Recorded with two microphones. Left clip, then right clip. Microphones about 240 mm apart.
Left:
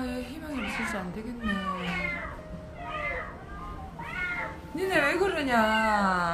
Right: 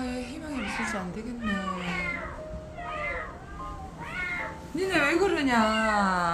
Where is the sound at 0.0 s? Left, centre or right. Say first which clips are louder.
Right 1 dB; centre.